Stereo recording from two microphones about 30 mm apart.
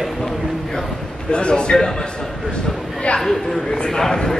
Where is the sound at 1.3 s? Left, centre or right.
Left.